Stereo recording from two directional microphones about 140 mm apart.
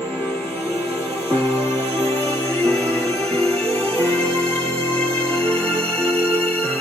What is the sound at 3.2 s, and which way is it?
Music, 5° left (ahead or behind).